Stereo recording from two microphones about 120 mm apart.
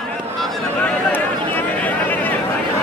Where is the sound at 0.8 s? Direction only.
15° left (ahead or behind).